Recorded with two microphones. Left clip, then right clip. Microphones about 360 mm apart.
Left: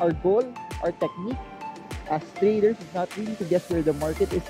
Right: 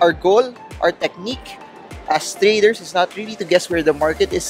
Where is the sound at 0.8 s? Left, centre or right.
Centre.